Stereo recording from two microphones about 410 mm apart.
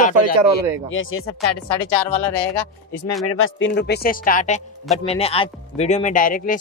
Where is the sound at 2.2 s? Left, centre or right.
Centre.